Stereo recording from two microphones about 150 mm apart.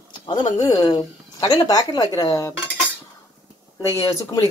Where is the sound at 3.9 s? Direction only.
20° left (ahead or behind).